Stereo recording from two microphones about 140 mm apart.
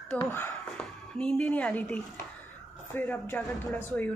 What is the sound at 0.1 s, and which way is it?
Speech, 15° left (ahead or behind).